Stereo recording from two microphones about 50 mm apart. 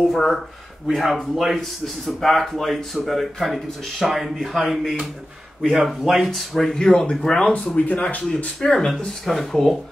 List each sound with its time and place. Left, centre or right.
0.1 s speech: centre
7.5 s speech: left
8.5 s speech: centre